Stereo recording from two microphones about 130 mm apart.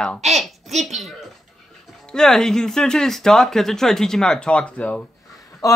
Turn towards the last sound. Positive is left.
turn(degrees=25)  # may be behind; listen again after turning